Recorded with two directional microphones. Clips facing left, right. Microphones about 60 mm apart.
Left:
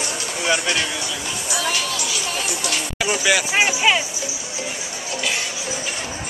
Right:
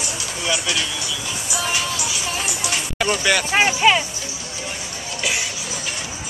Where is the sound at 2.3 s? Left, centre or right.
Right.